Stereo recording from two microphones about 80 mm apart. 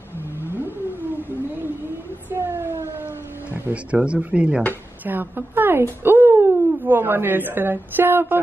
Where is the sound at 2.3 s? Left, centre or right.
Right.